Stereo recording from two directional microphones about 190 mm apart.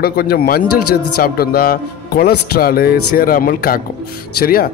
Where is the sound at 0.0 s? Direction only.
55° left (ahead or behind).